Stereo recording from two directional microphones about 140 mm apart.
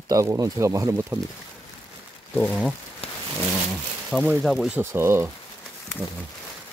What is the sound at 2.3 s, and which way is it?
Speech, 10° left (ahead or behind).